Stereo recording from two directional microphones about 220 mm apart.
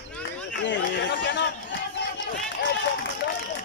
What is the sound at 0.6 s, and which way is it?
Speech, 55° left (ahead or behind).